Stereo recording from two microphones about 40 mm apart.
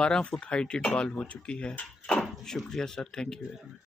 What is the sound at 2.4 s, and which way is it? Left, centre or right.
Speech, centre.